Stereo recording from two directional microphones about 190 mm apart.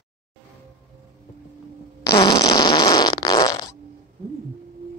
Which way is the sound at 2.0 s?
20° left (ahead or behind).